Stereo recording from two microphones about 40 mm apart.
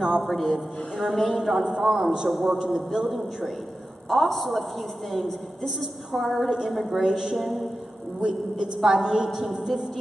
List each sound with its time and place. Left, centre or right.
0.2 s a woman's voice: centre
7.1 s a woman's voice: centre
7.3 s a woman's voice: centre
8.2 s a woman's voice: centre
9.3 s a woman's voice: centre